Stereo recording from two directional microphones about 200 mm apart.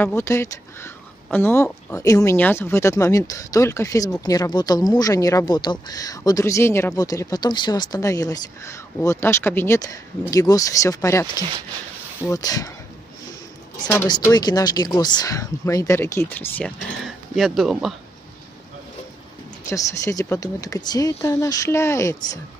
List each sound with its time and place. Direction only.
0.0 s speech: 10° left (ahead or behind)
13.8 s speech: 20° left (ahead or behind); by 17.9 s centre (ahead or behind)
19.6 s speech: 15° left (ahead or behind)